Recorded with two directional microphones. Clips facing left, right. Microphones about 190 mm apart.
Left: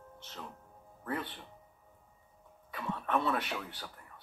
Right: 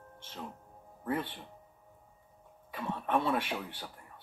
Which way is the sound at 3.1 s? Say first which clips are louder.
Right 2 dB; 15° right (ahead or behind).